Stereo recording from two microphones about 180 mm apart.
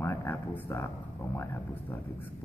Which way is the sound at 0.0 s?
15° left (ahead or behind).